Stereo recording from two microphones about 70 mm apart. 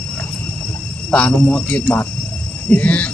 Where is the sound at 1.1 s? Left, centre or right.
Centre.